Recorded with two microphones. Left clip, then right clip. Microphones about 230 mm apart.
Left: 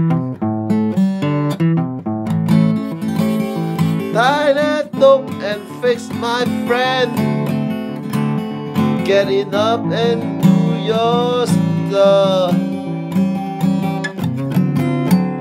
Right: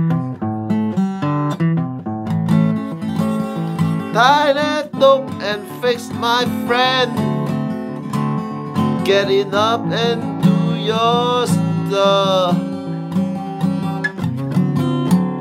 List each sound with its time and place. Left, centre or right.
1.2 s music: left
4.1 s music: centre
7.2 s music: left
9.0 s music: centre
14.7 s music: left